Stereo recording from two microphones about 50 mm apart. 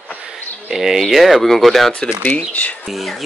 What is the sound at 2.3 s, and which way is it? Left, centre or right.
Speech, left.